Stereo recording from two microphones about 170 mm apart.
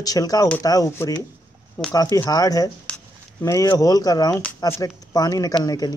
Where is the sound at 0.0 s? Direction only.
20° left (ahead or behind).